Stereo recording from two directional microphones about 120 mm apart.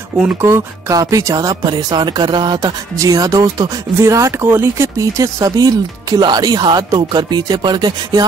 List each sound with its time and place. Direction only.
0.2 s speech: 20° right (ahead or behind); by 8.3 s 35° right (ahead or behind)